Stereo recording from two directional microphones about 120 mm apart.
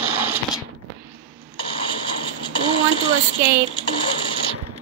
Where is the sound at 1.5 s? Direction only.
45° left (ahead or behind).